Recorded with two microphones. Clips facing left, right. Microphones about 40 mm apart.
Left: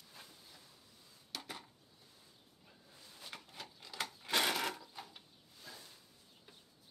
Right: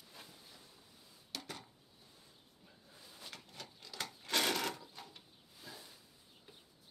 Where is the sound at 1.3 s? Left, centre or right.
Centre.